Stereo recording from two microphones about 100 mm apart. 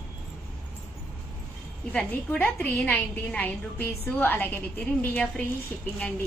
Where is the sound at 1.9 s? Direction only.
15° left (ahead or behind).